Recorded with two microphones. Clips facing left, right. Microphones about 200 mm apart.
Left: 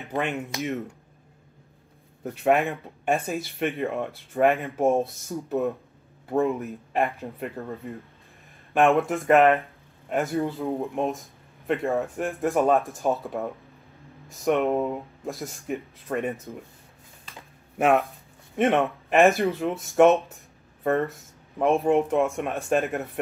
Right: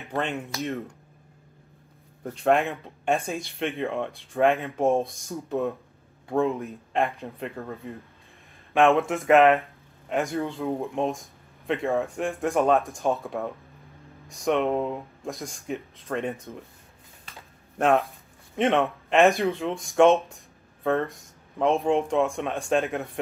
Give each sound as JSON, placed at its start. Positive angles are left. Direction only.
{"t": 0.1, "sound": "speech", "side_deg": 15}
{"t": 2.2, "sound": "speech", "side_deg": 5}
{"t": 4.6, "sound": "speech", "side_deg": 15}
{"t": 8.7, "sound": "speech", "side_deg": 0}
{"t": 17.7, "sound": "speech", "side_deg": 5}